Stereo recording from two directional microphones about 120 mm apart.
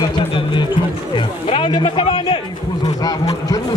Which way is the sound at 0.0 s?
40° left (ahead or behind).